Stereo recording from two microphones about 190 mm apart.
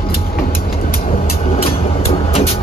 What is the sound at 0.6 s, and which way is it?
Vehicle, 50° left (ahead or behind).